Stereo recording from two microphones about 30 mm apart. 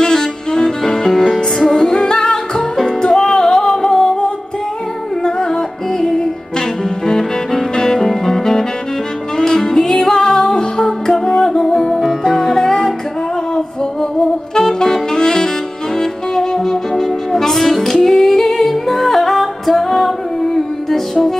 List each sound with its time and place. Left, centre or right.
0.0 s saxophone: left
0.8 s music: centre
1.2 s music: centre
1.7 s music: left
5.2 s music: left
7.7 s music: left
12.0 s music: centre
12.4 s music: centre
14.6 s saxophone: centre
16.0 s music: centre